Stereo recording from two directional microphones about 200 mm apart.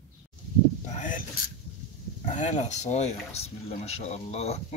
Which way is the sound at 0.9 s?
40° left (ahead or behind).